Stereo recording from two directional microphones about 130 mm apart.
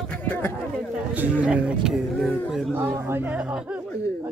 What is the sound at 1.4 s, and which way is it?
Speech, 10° right (ahead or behind).